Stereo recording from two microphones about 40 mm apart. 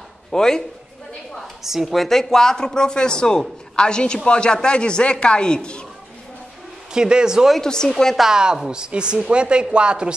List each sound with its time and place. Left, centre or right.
0.3 s a man's voice: centre
1.6 s a woman's voice: centre
2.0 s a man's voice: centre
6.9 s speech: centre
7.6 s a man's voice: centre
8.2 s a woman's voice: centre